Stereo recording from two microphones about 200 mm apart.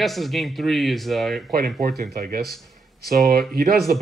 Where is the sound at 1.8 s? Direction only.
50° right (ahead or behind).